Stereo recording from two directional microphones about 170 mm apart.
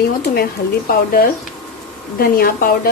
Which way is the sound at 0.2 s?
65° left (ahead or behind).